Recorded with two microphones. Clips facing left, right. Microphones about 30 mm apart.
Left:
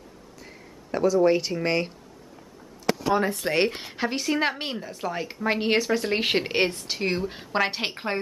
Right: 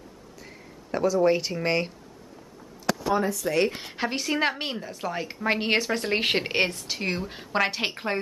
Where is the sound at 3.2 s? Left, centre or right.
Left.